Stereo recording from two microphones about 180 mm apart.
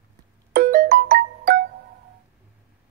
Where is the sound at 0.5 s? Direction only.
55° right (ahead or behind).